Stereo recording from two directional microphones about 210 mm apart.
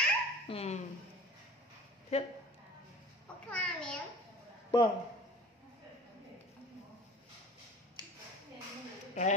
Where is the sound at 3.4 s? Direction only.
5° left (ahead or behind).